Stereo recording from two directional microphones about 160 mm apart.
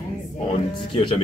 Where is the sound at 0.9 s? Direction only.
30° left (ahead or behind).